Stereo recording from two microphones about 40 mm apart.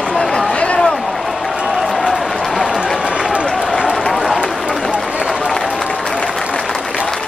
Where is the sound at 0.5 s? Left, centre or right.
Left.